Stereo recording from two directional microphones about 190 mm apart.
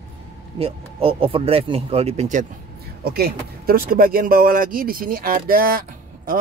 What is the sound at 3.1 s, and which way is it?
Speech, 55° right (ahead or behind).